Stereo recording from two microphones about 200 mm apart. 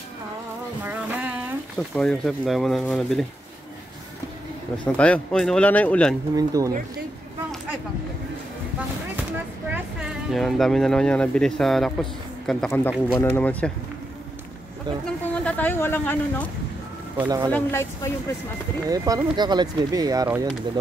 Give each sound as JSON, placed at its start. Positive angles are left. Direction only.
{"t": 0.8, "sound": "a sound", "side_deg": -10}
{"t": 1.8, "sound": "speech", "side_deg": 0}
{"t": 4.8, "sound": "speech", "side_deg": 5}
{"t": 6.3, "sound": "speech", "side_deg": -15}
{"t": 9.7, "sound": "speech", "side_deg": -5}
{"t": 15.0, "sound": "a sound", "side_deg": 5}
{"t": 17.2, "sound": "speech", "side_deg": -20}
{"t": 17.5, "sound": "speech", "side_deg": 10}
{"t": 18.9, "sound": "speech", "side_deg": -20}